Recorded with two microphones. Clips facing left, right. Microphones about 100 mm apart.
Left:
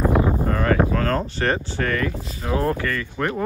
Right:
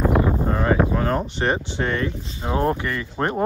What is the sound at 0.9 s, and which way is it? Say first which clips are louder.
Speech: even; 15° right (ahead or behind).